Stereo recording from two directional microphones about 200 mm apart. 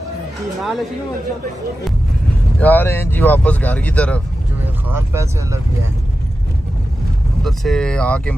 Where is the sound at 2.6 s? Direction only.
10° left (ahead or behind).